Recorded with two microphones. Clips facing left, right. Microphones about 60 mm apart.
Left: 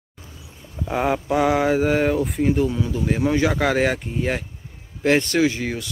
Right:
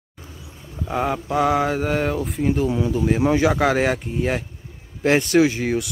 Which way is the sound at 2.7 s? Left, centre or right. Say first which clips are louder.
Right 3 dB; centre.